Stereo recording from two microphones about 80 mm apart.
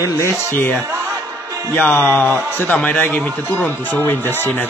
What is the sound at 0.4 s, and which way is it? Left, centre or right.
Speech, left.